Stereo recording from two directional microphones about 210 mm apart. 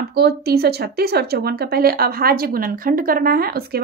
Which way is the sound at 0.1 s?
50° right (ahead or behind).